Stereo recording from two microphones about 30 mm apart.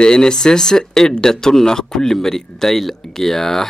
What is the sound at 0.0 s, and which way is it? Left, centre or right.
Speech, left.